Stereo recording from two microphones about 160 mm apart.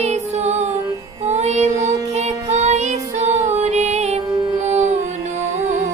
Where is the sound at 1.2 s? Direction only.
45° right (ahead or behind).